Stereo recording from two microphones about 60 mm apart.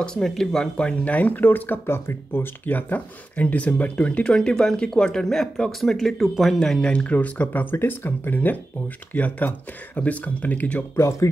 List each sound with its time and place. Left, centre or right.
0.0 s speech: centre
6.9 s speech: left
7.7 s speech: left
11.0 s speech: left